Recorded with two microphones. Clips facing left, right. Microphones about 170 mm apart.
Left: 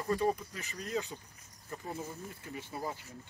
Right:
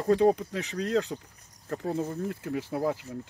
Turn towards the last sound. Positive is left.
turn(degrees=-90)